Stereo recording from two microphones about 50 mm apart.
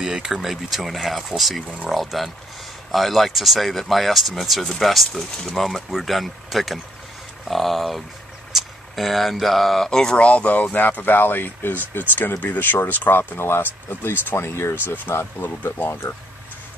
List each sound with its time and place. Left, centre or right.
0.0 s speech: centre
9.8 s speech: centre
10.1 s speech: left
15.9 s speech: left